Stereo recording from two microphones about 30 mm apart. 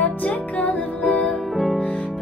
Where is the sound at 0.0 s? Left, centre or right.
Left.